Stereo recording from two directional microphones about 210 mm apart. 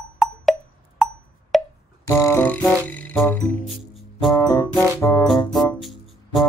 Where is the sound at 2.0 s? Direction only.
10° left (ahead or behind).